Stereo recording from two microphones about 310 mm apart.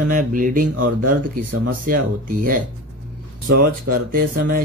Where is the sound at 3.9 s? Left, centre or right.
Right.